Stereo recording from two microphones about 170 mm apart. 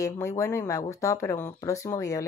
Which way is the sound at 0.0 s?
15° left (ahead or behind).